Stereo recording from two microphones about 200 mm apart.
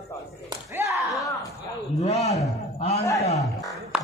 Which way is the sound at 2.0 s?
35° left (ahead or behind).